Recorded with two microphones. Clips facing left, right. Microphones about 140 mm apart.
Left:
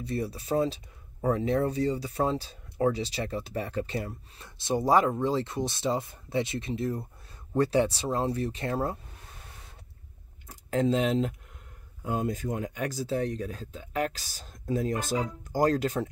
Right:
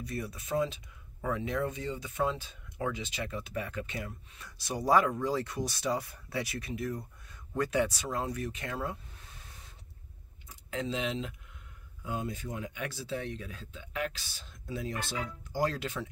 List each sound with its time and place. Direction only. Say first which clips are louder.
0.0 s speech: left 6 dB; 30° left (ahead or behind)
10.4 s speech: left 10 dB; 45° left (ahead or behind)